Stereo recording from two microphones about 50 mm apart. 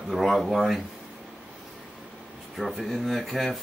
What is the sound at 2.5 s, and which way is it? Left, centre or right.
Speech, centre.